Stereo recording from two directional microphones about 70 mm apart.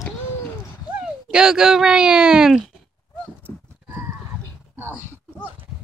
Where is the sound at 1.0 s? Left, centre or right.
Centre.